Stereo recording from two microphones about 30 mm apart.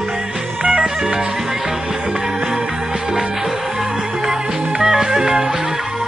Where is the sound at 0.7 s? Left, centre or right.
Centre.